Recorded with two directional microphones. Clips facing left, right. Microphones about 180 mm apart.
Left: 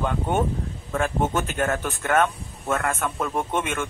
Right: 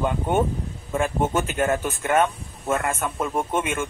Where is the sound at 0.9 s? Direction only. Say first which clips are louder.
Right 1 dB; 15° right (ahead or behind).